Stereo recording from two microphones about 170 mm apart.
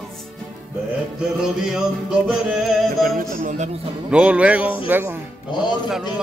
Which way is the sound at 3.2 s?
45° right (ahead or behind).